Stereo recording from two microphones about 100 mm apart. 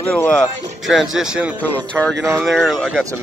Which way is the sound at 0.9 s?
5° right (ahead or behind).